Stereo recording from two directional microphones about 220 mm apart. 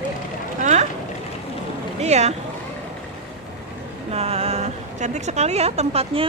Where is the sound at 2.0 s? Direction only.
30° right (ahead or behind).